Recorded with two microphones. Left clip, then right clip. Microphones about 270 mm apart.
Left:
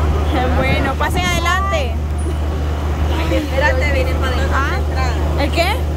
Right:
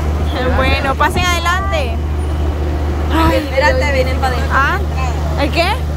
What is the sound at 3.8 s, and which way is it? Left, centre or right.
Speech, centre.